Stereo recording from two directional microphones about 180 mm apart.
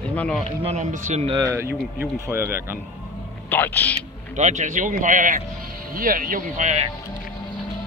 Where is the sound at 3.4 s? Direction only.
10° left (ahead or behind).